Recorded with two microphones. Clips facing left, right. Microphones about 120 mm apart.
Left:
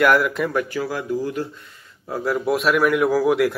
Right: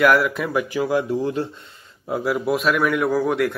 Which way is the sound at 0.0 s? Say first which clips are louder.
Even; centre (ahead or behind).